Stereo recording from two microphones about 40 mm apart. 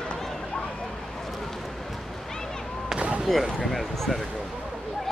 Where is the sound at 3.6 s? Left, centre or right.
Centre.